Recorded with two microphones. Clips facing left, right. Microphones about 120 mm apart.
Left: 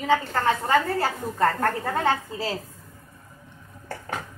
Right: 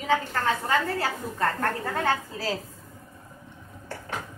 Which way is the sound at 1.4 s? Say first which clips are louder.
Left 4 dB; 25° left (ahead or behind).